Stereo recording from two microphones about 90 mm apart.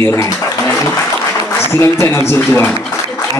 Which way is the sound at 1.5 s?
30° left (ahead or behind).